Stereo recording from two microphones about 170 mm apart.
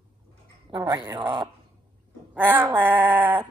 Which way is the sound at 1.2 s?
15° right (ahead or behind).